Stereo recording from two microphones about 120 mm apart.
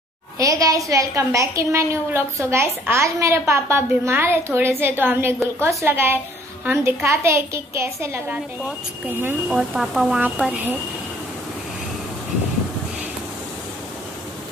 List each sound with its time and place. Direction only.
0.4 s a woman's voice: 30° right (ahead or behind)
9.5 s speech: 5° right (ahead or behind)